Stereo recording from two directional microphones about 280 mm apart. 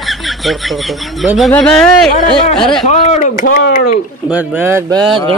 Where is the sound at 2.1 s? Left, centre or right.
Centre.